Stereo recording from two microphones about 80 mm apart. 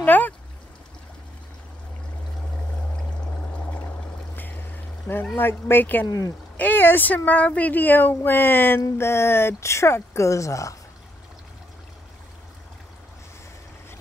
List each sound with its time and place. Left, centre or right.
0.0 s a sound: left
4.4 s pour: left
5.4 s speech: left
6.0 s speech: left
6.5 s speech: left